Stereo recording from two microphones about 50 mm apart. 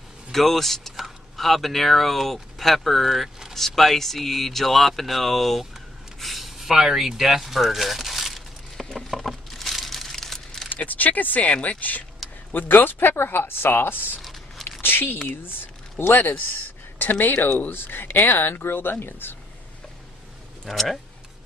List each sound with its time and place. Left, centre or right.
0.3 s speech: centre
6.1 s a sound: centre
8.9 s crumpling: centre
10.7 s speech: left
11.4 s speech: left
12.2 s a sound: centre
12.5 s speech: left
14.8 s a sound: left
15.4 s speech: left
20.7 s speech: centre